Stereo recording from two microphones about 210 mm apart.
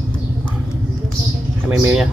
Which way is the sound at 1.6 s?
5° right (ahead or behind).